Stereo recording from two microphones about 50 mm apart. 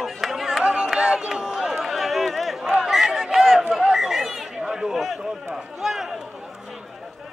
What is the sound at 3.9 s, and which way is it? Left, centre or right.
Chatter, centre.